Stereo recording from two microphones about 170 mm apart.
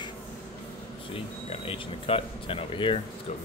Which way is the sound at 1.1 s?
35° left (ahead or behind).